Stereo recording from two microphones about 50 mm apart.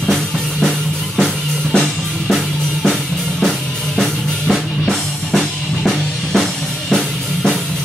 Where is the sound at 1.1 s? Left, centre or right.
Centre.